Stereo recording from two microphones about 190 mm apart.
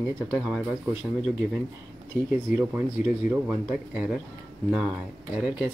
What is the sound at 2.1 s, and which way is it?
Speech, 10° right (ahead or behind).